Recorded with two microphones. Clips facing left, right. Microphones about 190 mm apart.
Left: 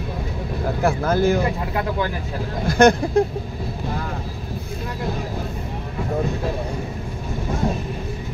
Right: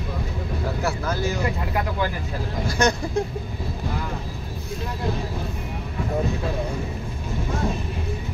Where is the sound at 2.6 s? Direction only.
55° left (ahead or behind).